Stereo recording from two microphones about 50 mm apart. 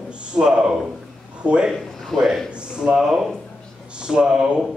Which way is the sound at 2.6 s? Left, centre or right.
Centre.